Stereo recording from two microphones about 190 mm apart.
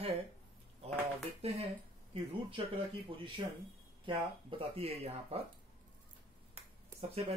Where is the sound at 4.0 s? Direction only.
25° right (ahead or behind).